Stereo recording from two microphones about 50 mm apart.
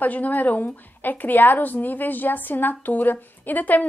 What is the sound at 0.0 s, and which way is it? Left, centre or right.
A woman's voice, left.